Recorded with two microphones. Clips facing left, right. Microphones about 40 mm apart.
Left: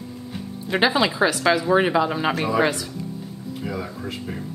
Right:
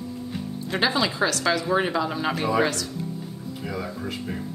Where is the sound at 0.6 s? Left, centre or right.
Centre.